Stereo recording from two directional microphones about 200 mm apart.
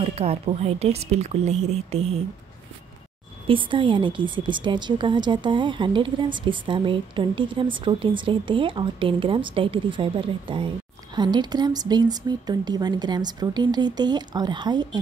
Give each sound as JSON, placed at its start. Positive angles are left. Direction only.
{"t": 0.0, "sound": "a woman's voice", "side_deg": -30}
{"t": 3.4, "sound": "a woman's voice", "side_deg": -25}